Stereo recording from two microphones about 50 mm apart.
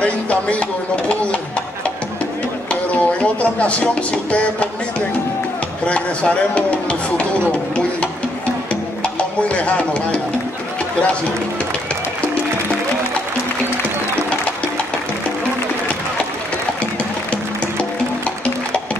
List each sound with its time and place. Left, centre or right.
0.0 s music: left
2.7 s speech: left
5.9 s music: left
9.0 s music: left